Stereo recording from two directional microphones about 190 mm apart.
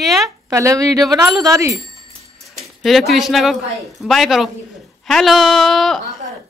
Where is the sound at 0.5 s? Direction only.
15° right (ahead or behind).